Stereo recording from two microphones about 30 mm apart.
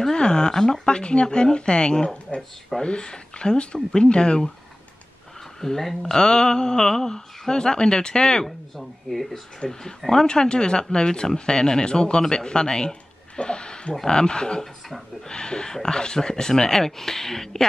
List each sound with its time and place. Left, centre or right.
0.1 s a sound: left
0.7 s speech: left
2.8 s speech: left
5.6 s speech: centre
6.1 s speech: left
8.5 s speech: centre
9.6 s speech: left
13.4 s a sound: left
14.0 s speech: left